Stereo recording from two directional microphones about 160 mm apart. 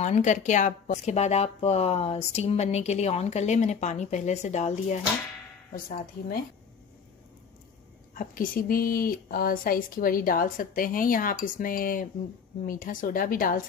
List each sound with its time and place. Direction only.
0.0 s speech: 50° left (ahead or behind)
5.7 s speech: 65° left (ahead or behind)
8.1 s speech: 60° left (ahead or behind)